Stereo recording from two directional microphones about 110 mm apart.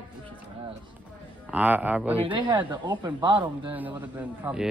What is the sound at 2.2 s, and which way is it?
Speech, 45° right (ahead or behind).